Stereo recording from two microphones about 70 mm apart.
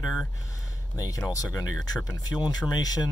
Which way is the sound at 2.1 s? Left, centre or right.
Left.